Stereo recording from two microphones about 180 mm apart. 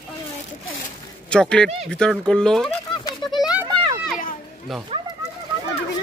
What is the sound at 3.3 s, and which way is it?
Children playing, centre (ahead or behind).